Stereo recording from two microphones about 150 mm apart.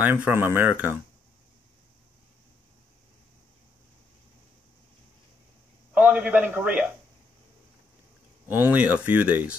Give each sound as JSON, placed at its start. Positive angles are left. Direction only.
{"t": 0.0, "sound": "speech", "side_deg": -15}
{"t": 5.9, "sound": "speech", "side_deg": -10}
{"t": 8.5, "sound": "speech", "side_deg": -10}